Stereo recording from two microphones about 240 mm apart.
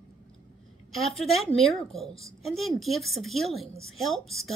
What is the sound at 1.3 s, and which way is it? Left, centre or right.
A woman's voice, centre.